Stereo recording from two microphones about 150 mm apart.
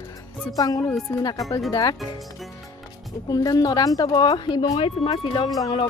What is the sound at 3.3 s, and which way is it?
A woman's voice, 25° left (ahead or behind).